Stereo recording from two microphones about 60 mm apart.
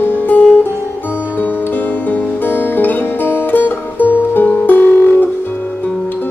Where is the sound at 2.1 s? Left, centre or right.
Left.